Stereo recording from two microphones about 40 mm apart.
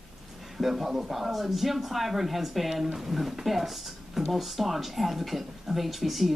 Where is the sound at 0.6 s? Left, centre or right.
Centre.